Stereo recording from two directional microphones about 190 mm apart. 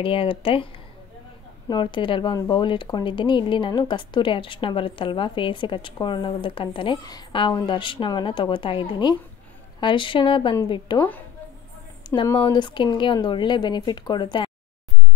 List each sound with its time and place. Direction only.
0.0 s speech: 30° left (ahead or behind)
1.7 s speech: 25° left (ahead or behind)
12.2 s speech: 25° left (ahead or behind)